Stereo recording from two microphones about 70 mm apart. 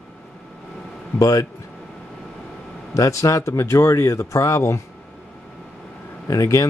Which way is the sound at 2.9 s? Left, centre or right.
Left.